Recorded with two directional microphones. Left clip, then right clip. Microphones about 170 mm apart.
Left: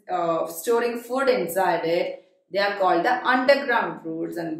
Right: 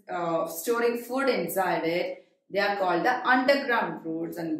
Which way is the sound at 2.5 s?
15° left (ahead or behind).